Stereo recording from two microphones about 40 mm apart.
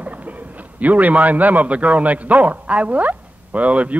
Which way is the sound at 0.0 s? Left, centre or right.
Right.